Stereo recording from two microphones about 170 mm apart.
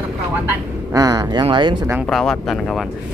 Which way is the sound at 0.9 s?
20° right (ahead or behind).